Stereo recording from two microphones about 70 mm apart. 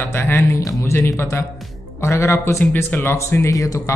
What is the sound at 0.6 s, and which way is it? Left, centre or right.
Speech, left.